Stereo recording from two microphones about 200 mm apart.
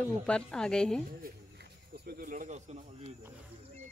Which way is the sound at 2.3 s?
40° right (ahead or behind).